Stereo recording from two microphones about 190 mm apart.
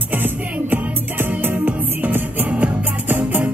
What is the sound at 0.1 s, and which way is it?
Music, 10° right (ahead or behind).